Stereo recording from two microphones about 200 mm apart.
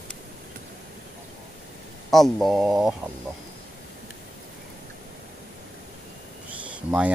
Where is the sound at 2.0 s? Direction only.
Centre (ahead or behind).